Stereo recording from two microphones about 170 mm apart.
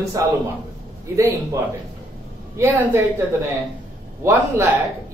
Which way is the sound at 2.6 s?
15° right (ahead or behind).